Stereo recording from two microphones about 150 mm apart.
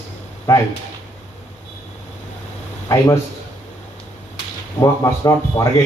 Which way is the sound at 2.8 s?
20° left (ahead or behind).